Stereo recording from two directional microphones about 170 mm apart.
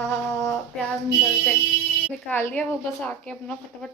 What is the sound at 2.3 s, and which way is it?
A woman's voice, 10° left (ahead or behind).